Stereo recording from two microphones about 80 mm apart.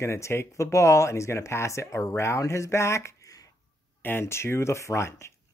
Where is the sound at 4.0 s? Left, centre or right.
Left.